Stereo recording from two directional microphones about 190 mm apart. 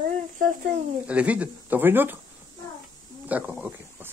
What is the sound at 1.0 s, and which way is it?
Speech, 5° right (ahead or behind).